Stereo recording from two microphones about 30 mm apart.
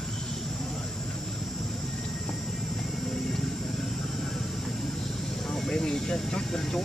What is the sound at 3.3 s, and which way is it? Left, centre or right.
Vehicle, centre.